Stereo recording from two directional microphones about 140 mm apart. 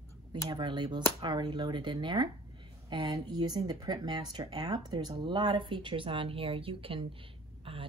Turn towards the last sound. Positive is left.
turn(degrees=-40)  # may be behind; listen again after turning